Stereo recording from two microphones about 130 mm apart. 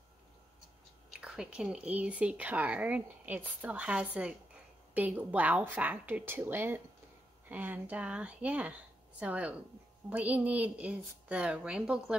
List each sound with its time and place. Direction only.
1.2 s speech: 5° right (ahead or behind)